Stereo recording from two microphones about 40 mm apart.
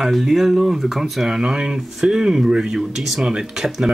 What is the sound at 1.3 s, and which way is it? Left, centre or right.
Speech, centre.